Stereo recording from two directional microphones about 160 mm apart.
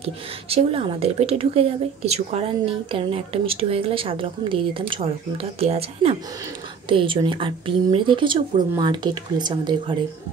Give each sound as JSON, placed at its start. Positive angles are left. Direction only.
{"t": 0.0, "sound": "a woman's voice", "side_deg": -40}